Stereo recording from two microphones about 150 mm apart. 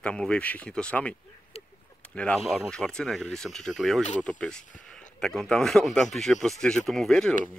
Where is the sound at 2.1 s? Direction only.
5° left (ahead or behind).